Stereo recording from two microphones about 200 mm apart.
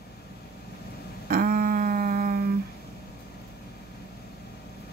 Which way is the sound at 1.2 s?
45° right (ahead or behind).